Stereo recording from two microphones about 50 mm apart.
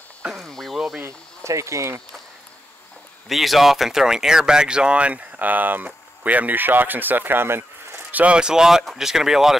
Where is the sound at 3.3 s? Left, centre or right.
Centre; by 8.0 s right.